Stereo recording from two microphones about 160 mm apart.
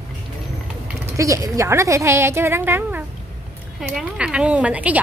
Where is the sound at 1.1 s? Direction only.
20° right (ahead or behind).